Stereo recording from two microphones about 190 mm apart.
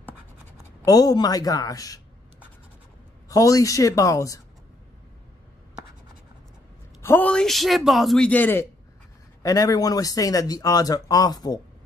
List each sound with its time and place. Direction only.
0.8 s speech: 20° left (ahead or behind)
3.3 s speech: 20° left (ahead or behind)
7.0 s a man's voice: 10° left (ahead or behind)